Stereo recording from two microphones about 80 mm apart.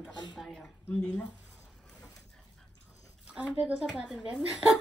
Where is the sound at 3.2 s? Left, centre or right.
Centre.